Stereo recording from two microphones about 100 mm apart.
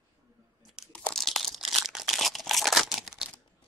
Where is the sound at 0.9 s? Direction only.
5° left (ahead or behind).